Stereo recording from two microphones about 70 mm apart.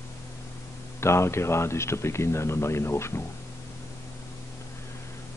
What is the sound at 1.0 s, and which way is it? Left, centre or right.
Speech, left.